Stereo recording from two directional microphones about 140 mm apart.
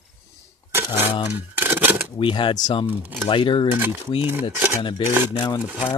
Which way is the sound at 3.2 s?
40° left (ahead or behind).